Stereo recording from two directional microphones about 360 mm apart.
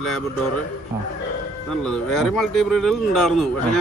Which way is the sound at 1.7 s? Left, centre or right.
Centre.